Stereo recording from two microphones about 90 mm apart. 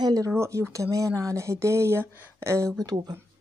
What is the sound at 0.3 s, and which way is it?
Speech, 30° right (ahead or behind).